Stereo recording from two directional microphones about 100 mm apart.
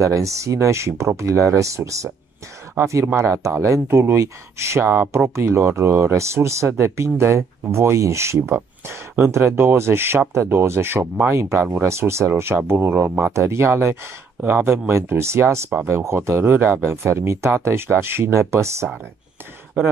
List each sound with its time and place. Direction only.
0.0 s speech: 30° right (ahead or behind)